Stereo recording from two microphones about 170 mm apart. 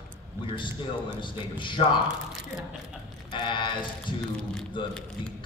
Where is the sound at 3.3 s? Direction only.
30° left (ahead or behind).